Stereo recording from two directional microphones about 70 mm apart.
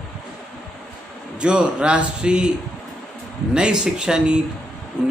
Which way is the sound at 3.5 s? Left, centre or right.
Centre.